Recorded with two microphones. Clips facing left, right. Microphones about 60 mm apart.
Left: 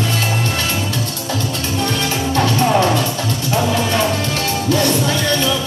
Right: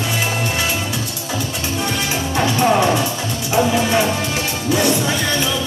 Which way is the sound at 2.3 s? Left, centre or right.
Centre.